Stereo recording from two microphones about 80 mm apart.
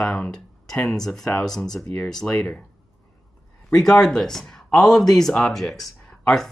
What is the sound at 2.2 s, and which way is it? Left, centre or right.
Speech, centre.